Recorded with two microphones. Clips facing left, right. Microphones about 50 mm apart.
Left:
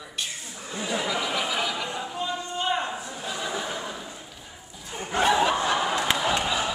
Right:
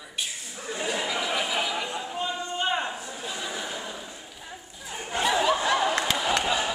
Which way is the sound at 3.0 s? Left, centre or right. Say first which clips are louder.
Left 2 dB; centre.